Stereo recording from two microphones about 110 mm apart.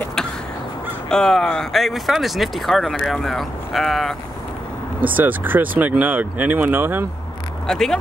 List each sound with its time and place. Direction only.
1.0 s speech: 5° left (ahead or behind)
5.0 s speech: 15° right (ahead or behind)
7.6 s speech: 5° left (ahead or behind)